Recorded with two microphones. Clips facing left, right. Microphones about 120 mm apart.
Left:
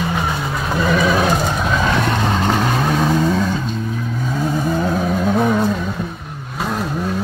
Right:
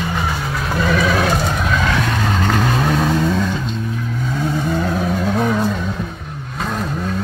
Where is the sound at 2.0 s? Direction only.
25° left (ahead or behind).